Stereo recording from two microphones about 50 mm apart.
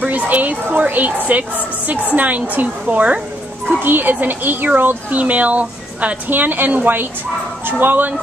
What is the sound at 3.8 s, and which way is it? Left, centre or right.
A woman's voice, right.